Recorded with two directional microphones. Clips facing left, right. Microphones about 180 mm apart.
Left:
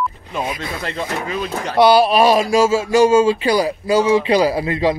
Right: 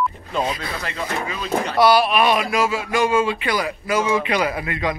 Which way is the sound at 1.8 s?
30° left (ahead or behind).